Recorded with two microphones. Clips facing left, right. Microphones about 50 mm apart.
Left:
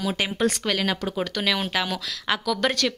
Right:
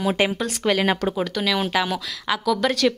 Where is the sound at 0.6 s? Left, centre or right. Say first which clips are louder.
Right 5 dB; centre.